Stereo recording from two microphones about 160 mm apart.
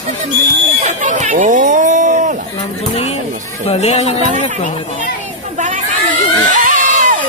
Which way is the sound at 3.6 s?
45° left (ahead or behind).